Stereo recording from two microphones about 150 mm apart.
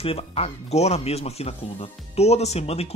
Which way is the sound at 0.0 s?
40° left (ahead or behind).